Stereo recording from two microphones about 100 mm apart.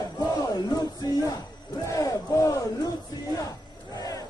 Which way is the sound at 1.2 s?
40° left (ahead or behind).